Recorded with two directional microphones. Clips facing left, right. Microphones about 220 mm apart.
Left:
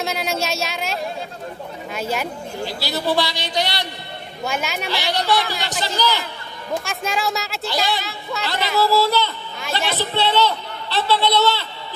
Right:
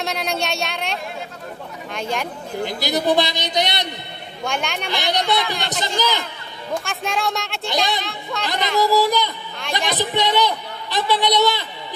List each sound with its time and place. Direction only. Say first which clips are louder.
0.0 s a sound: left 1 dB; centre (ahead or behind)
2.0 s speech: left 1 dB; 5° left (ahead or behind)
2.6 s a man's voice: right 3 dB; 20° right (ahead or behind)
4.5 s speech: even; 5° left (ahead or behind)
4.9 s a man's voice: even; 20° right (ahead or behind)
6.7 s speech: even; centre (ahead or behind)
8.7 s a man's voice: even; 15° right (ahead or behind)